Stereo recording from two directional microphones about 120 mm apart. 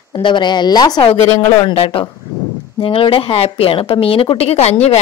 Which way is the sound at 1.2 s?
25° left (ahead or behind).